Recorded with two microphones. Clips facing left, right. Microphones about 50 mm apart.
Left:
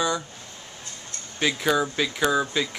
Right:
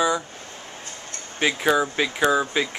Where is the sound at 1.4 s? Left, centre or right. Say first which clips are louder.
Right 2 dB; centre.